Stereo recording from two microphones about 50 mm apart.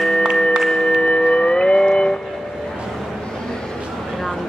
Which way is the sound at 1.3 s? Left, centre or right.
Centre.